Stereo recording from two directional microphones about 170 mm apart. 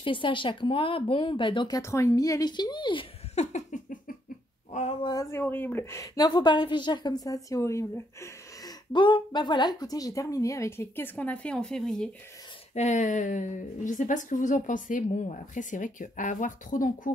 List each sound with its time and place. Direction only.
0.0 s a woman's voice: 30° left (ahead or behind)
1.8 s a woman's voice: 15° left (ahead or behind)
3.5 s a sound: 50° left (ahead or behind)
5.0 s a woman's voice: 20° left (ahead or behind); by 12.1 s centre (ahead or behind)
12.7 s a woman's voice: 45° left (ahead or behind)